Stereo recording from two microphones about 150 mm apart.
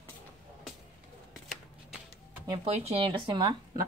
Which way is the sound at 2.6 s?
40° right (ahead or behind).